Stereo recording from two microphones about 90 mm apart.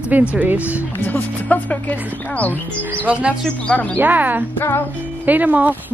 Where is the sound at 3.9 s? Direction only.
20° right (ahead or behind).